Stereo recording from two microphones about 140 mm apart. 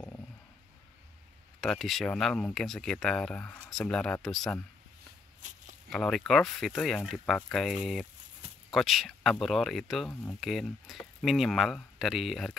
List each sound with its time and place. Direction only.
1.6 s speech: centre (ahead or behind)
5.4 s speech: 60° right (ahead or behind)
5.9 s speech: 5° left (ahead or behind)